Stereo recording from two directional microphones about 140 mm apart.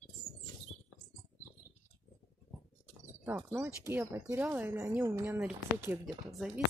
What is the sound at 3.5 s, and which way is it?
Speech, 15° right (ahead or behind).